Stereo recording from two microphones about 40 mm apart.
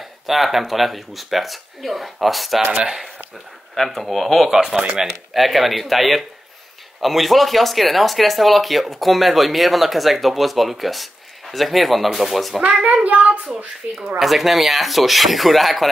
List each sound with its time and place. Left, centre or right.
0.0 s speech: centre
2.7 s speech: right
3.7 s speech: centre
12.8 s a child's voice: right
14.2 s speech: centre